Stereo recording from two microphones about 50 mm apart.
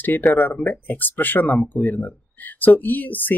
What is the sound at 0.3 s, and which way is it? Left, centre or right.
Speech, left.